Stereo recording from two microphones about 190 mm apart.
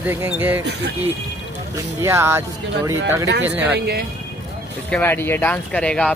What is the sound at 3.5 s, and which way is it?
Speech, 10° right (ahead or behind).